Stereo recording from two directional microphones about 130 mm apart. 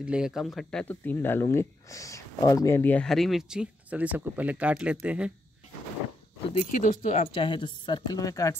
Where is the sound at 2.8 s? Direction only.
10° left (ahead or behind); by 5.3 s 10° right (ahead or behind).